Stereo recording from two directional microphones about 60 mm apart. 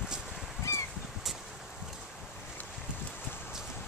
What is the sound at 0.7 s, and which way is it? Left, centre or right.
Goose, left.